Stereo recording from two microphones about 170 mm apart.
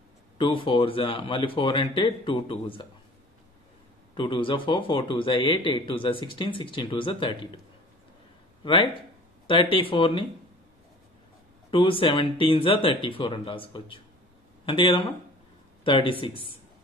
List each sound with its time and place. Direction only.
0.4 s speech: 30° left (ahead or behind)
4.2 s speech: 30° left (ahead or behind)
8.6 s speech: 30° left (ahead or behind)
11.7 s speech: 30° left (ahead or behind)